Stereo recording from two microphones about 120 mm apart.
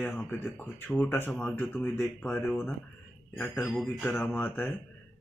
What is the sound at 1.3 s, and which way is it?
A man's voice, 10° left (ahead or behind).